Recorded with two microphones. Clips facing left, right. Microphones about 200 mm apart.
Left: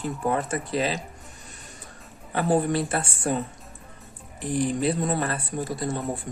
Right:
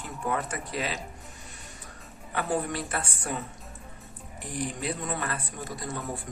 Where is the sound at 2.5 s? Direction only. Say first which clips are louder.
Left 8 dB; 30° left (ahead or behind).